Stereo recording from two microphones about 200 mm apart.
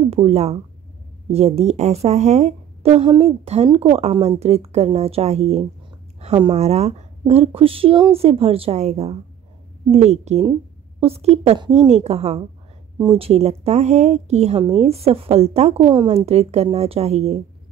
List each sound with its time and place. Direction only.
0.1 s speech: 30° right (ahead or behind)